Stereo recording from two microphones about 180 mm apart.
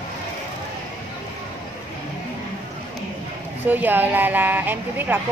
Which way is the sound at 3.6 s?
10° right (ahead or behind).